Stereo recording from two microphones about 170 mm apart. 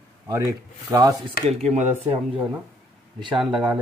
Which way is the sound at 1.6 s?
40° right (ahead or behind).